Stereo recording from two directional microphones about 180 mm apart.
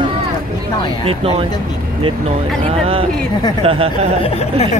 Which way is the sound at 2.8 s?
30° right (ahead or behind).